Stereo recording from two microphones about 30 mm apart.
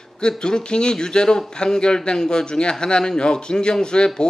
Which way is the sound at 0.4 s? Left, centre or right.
Left.